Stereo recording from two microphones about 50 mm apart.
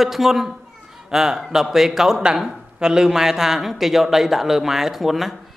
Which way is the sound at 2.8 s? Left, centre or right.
Centre.